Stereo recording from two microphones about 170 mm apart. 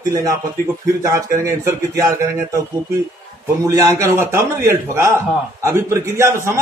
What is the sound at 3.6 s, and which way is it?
A man's voice, 20° right (ahead or behind).